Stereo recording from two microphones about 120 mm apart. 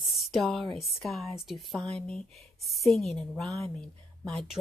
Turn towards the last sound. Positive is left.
turn(degrees=5)  # may be behind; listen again after turning